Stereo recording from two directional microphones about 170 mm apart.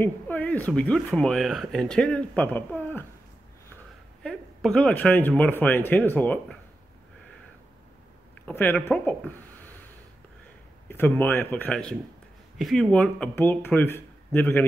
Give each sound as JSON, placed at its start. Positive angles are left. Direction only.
{"t": 0.0, "sound": "speech", "side_deg": 10}
{"t": 4.2, "sound": "speech", "side_deg": 5}
{"t": 8.5, "sound": "speech", "side_deg": 10}
{"t": 10.9, "sound": "speech", "side_deg": 10}